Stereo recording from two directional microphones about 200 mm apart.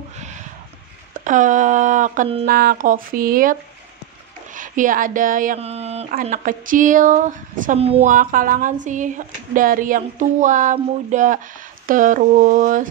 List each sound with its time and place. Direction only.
1.2 s a woman's voice: 40° right (ahead or behind)
2.4 s speech: 45° right (ahead or behind)
4.6 s a woman's voice: 40° right (ahead or behind)
6.2 s a woman's voice: 45° right (ahead or behind)